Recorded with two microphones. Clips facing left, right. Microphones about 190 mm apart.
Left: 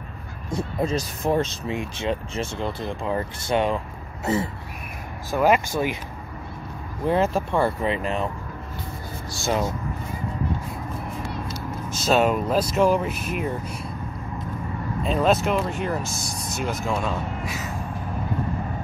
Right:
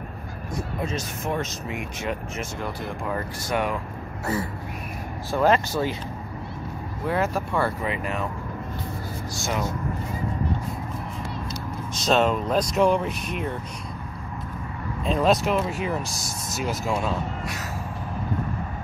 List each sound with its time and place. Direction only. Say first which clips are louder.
0.5 s speech: left 5 dB; 30° left (ahead or behind)
5.3 s speech: left 1 dB; 10° left (ahead or behind)
7.1 s speech: left 4 dB; 25° left (ahead or behind)
9.3 s speech: left 4 dB; 30° left (ahead or behind)
11.9 s speech: left 1 dB; 5° left (ahead or behind)
15.0 s speech: even; centre (ahead or behind)